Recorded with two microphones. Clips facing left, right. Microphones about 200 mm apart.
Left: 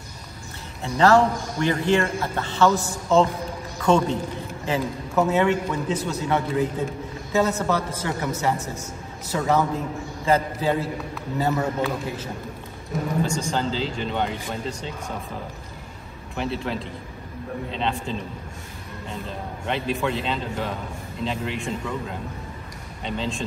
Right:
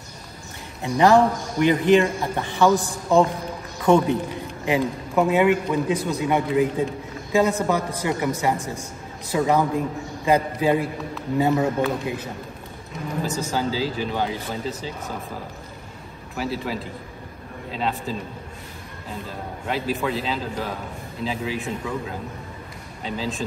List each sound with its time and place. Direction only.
0.8 s a man's voice: 15° right (ahead or behind)
13.2 s a man's voice: 5° right (ahead or behind)
16.3 s a man's voice: 5° right (ahead or behind)
23.0 s a man's voice: 5° right (ahead or behind)